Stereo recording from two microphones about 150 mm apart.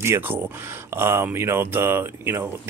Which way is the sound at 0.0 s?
15° right (ahead or behind).